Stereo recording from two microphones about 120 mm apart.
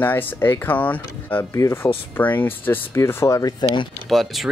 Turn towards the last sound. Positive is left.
turn(degrees=0)  # may be behind; listen again after turning